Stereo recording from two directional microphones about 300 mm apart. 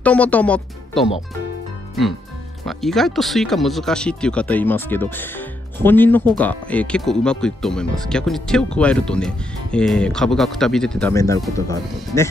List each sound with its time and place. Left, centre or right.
0.0 s speech: centre
2.6 s speech: centre